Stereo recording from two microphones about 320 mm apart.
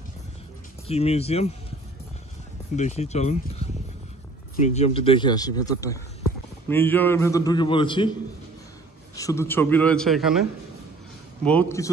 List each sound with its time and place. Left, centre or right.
0.8 s speech: centre
2.7 s speech: left
9.1 s a man's voice: centre
11.4 s speech: centre